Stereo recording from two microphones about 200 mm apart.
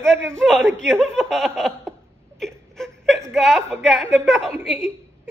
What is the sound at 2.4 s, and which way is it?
Whimper, centre (ahead or behind).